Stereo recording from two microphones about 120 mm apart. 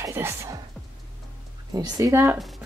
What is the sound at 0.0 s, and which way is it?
Speech, 20° right (ahead or behind).